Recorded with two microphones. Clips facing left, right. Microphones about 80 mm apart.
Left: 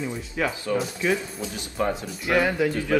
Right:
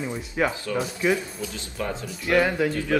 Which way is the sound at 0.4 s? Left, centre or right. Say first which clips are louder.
Even; right.